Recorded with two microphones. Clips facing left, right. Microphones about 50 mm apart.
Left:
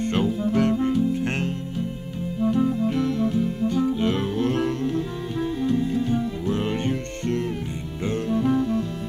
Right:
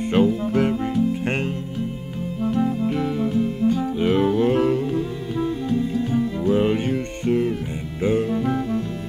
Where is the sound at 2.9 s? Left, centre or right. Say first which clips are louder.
Right 1 dB; centre.